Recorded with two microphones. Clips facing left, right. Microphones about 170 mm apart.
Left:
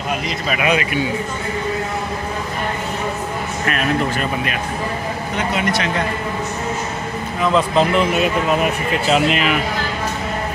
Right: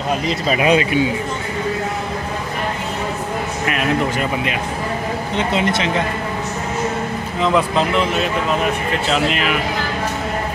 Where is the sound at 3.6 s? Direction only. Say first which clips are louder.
Even; 15° right (ahead or behind).